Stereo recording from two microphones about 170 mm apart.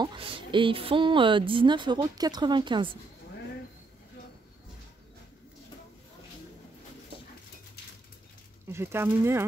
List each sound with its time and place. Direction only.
0.0 s a woman's voice: 30° right (ahead or behind)
8.7 s speech: 15° right (ahead or behind)